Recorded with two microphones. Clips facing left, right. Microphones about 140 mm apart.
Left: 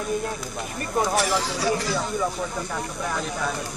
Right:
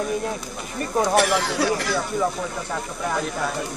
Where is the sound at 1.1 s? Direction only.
60° right (ahead or behind).